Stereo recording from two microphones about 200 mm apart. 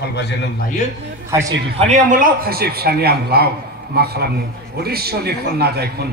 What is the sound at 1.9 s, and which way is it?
A man's voice, 40° right (ahead or behind).